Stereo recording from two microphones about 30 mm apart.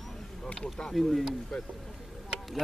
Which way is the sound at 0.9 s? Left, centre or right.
Centre.